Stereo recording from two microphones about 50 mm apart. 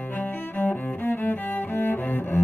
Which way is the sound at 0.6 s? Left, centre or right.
Left.